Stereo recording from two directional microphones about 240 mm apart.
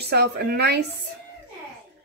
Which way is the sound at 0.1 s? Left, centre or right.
Right.